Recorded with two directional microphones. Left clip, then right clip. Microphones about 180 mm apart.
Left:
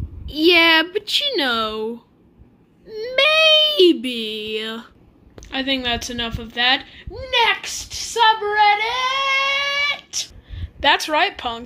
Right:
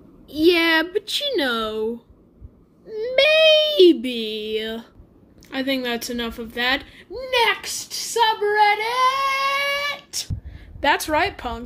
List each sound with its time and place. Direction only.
0.3 s speech: centre (ahead or behind)
10.5 s speech: 15° right (ahead or behind)